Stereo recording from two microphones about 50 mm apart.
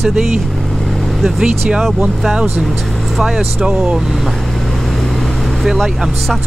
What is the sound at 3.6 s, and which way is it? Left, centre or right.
Speech, centre.